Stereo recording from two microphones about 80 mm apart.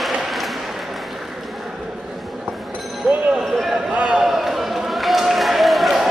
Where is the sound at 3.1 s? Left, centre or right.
Centre.